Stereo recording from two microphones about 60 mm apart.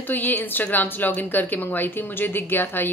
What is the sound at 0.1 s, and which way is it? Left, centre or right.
Speech, left.